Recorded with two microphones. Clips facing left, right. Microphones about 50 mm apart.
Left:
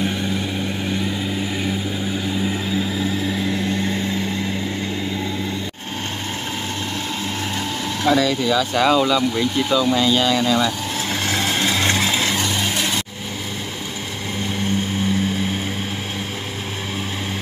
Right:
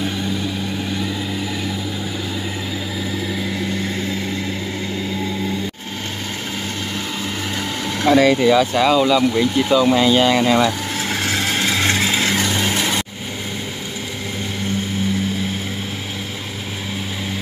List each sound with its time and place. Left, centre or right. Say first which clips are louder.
8.0 s speech: right 5 dB; right
8.7 s speech: right 2 dB; centre; by 10.7 s right
11.1 s vehicle: right 1 dB; centre
12.4 s vehicle: right 2 dB; right